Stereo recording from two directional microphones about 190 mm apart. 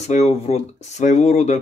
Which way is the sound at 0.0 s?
35° left (ahead or behind).